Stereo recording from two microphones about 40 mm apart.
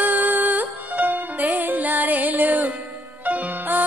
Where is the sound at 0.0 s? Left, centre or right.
Right.